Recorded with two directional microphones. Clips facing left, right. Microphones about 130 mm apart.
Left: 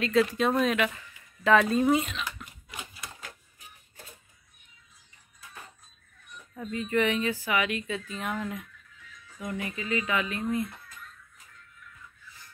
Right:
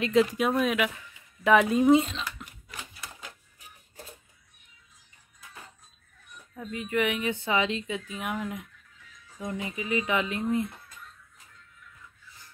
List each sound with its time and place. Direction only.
0.0 s speech: 20° right (ahead or behind)
0.5 s speech: 5° right (ahead or behind); by 2.2 s 25° right (ahead or behind)
2.7 s typewriter: 15° left (ahead or behind)
6.5 s speech: 5° right (ahead or behind)
7.2 s speech: 25° right (ahead or behind)